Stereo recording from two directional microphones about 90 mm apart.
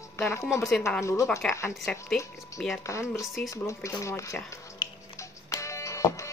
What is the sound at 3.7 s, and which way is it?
Speech, 35° left (ahead or behind).